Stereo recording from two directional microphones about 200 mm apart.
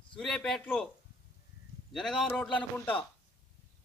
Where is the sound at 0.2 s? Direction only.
5° left (ahead or behind).